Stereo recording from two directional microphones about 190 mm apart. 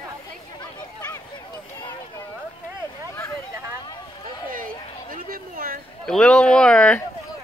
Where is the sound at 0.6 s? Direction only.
20° left (ahead or behind).